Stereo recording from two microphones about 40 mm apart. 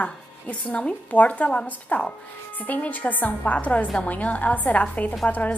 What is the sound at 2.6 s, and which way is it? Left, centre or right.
A woman's voice, left.